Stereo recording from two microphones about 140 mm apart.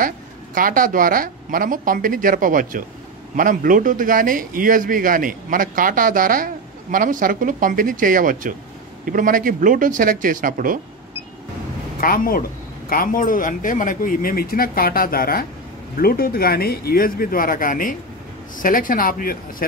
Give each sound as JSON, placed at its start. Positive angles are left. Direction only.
{"t": 0.6, "sound": "a woman's voice", "side_deg": -80}
{"t": 12.0, "sound": "speech", "side_deg": 90}